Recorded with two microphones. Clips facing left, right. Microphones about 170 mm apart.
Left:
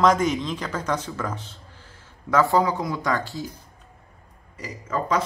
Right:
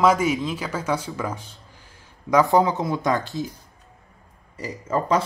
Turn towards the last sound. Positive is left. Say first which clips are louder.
# right 3 dB
turn(degrees=-30)  # may be behind; listen again after turning